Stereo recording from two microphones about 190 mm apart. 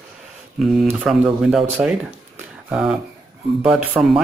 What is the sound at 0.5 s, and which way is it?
Speech, centre (ahead or behind).